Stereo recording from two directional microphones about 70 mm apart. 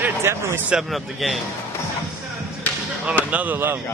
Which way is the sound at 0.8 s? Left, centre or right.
Centre.